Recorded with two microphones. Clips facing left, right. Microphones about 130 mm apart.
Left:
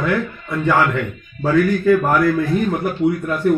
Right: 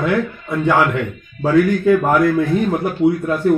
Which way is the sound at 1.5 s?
20° right (ahead or behind).